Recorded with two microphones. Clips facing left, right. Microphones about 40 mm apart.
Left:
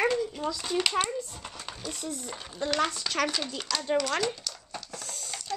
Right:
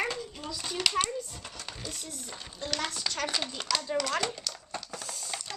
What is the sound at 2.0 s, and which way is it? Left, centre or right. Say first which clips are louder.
Speech: left 6 dB; left.